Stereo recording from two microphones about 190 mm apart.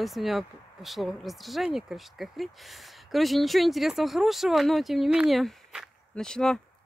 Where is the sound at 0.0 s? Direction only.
Centre (ahead or behind).